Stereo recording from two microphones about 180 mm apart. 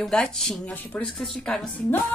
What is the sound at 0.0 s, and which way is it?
Speech, 5° left (ahead or behind).